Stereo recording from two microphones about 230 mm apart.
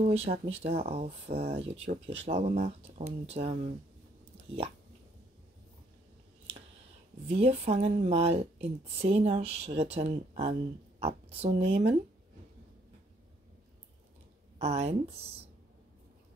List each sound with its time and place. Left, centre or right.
0.0 s a woman's voice: right
7.2 s a woman's voice: right
14.6 s a woman's voice: right